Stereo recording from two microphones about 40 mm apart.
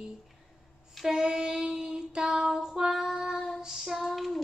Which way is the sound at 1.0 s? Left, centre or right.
Centre.